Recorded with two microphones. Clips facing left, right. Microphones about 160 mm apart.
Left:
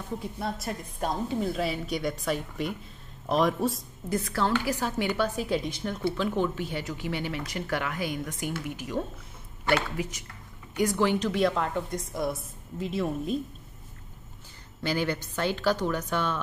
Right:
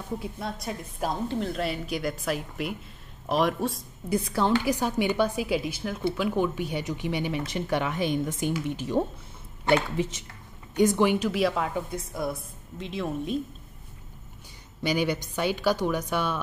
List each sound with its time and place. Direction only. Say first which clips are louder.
0.2 s a woman's voice: left 1 dB; centre (ahead or behind)
4.1 s a woman's voice: right 3 dB; 15° right (ahead or behind); by 13.4 s centre (ahead or behind)
14.8 s a woman's voice: right 2 dB; 15° right (ahead or behind)